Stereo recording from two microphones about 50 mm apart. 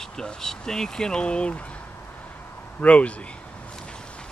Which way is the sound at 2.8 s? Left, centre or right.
Left.